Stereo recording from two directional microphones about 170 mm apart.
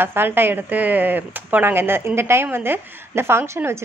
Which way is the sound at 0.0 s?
10° right (ahead or behind).